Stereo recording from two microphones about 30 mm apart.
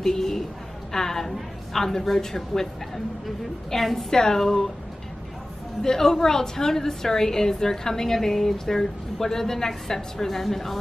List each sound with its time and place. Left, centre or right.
0.0 s a sound: centre
0.9 s a woman's voice: centre
5.8 s a woman's voice: centre